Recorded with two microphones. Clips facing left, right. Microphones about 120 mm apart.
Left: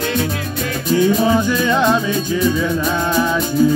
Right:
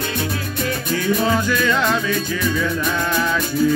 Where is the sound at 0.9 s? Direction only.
20° left (ahead or behind).